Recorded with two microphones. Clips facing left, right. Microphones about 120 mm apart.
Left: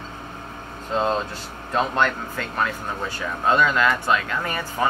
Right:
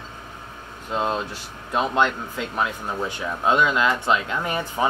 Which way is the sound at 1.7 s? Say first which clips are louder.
Even; 15° right (ahead or behind).